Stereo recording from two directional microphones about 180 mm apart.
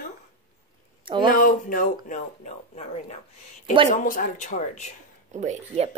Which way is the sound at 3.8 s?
45° left (ahead or behind).